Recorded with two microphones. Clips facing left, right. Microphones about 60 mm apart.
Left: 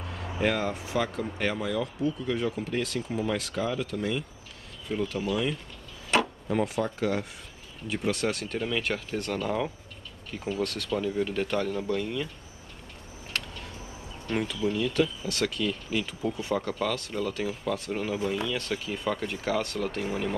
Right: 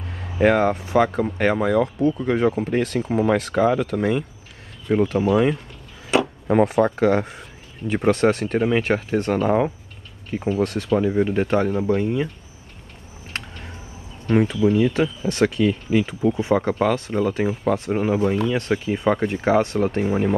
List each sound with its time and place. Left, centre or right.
0.4 s speech: right
4.9 s speech: right
6.4 s speech: right
7.9 s speech: right
14.3 s speech: right